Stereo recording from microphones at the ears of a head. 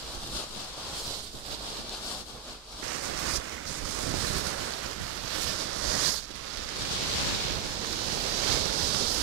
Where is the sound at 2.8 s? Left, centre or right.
Right.